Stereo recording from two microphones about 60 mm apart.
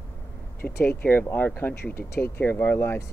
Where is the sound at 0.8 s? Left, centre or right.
Left.